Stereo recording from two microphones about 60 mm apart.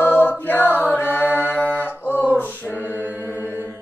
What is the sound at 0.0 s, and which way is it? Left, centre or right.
Chant, left.